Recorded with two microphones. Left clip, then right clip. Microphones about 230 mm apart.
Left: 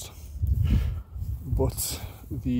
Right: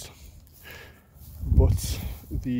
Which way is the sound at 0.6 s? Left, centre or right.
Centre.